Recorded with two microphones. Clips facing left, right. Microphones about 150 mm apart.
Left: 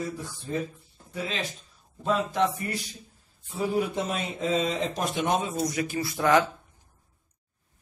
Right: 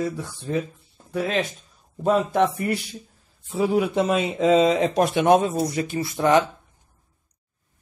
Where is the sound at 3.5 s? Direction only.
85° right; by 5.5 s 70° right (ahead or behind).